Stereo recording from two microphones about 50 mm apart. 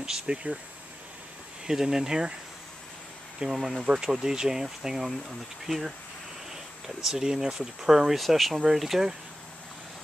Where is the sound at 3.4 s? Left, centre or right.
Centre.